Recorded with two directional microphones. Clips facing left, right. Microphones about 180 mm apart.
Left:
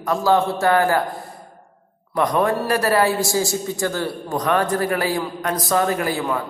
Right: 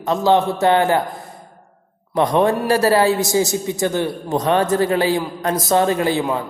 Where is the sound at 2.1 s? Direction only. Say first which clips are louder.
Right 3 dB; 25° right (ahead or behind).